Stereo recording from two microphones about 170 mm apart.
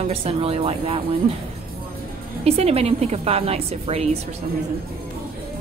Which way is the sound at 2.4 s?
35° right (ahead or behind).